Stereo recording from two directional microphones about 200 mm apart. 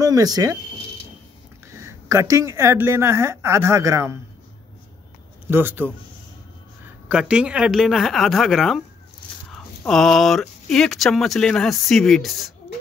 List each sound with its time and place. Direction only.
0.0 s speech: 20° right (ahead or behind)
1.7 s a woman's voice: 15° right (ahead or behind)
5.5 s speech: 10° right (ahead or behind)
7.1 s speech: 5° right (ahead or behind)